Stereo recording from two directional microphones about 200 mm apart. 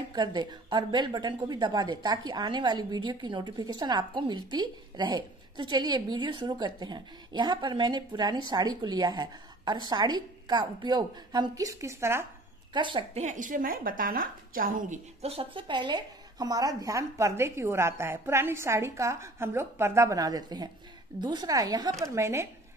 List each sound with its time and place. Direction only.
0.1 s a woman's voice: 20° right (ahead or behind)
12.7 s a woman's voice: 25° right (ahead or behind)